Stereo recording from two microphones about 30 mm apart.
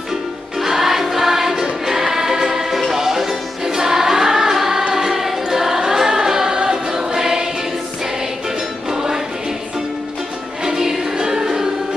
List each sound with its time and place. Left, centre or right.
0.6 s choir: centre
8.9 s music: centre
10.6 s music: centre